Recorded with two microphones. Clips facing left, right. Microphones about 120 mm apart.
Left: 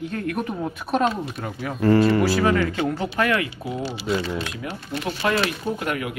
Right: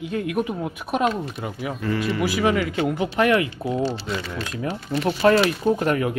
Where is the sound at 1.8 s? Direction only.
40° left (ahead or behind).